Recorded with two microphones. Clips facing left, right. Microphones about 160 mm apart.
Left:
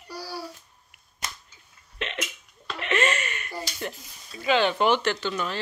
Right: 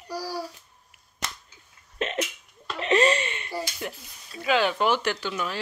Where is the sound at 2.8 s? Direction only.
35° right (ahead or behind).